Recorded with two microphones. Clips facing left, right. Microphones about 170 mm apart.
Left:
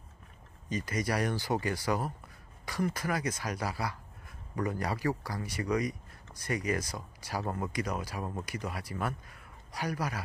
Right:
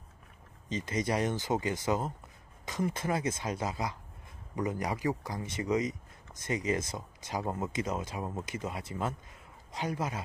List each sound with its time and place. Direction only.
0.7 s a man's voice: 25° right (ahead or behind)